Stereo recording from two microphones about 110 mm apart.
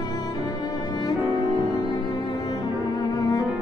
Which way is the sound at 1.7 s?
40° left (ahead or behind).